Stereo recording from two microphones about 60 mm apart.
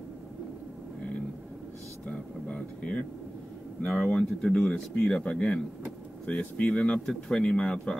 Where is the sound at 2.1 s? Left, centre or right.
Centre.